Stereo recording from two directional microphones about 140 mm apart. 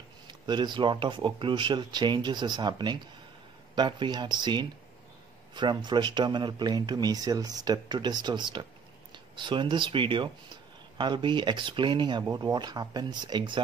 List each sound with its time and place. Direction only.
0.3 s speech: 35° right (ahead or behind)